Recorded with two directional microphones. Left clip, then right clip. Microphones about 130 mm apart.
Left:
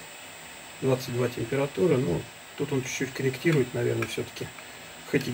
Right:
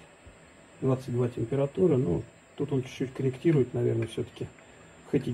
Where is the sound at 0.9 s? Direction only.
45° right (ahead or behind).